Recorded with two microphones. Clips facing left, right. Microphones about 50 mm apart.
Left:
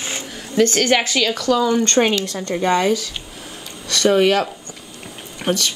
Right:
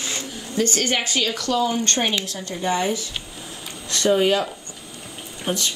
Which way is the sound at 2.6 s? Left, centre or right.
Left.